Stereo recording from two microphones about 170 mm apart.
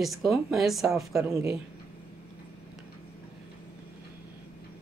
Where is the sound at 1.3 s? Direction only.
15° right (ahead or behind).